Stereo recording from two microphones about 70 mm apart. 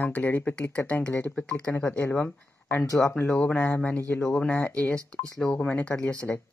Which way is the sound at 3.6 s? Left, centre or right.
Left.